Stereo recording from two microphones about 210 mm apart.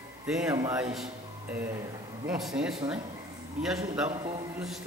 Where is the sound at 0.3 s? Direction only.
5° right (ahead or behind).